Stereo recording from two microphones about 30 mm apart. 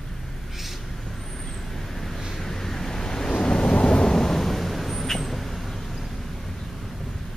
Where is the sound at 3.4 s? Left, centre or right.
Left.